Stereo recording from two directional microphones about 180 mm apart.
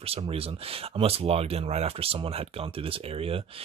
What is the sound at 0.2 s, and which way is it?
Speech, 30° right (ahead or behind).